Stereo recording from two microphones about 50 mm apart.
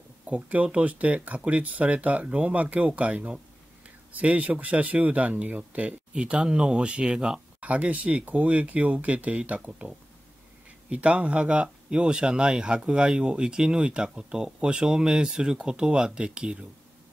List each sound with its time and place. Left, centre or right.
0.3 s speech: right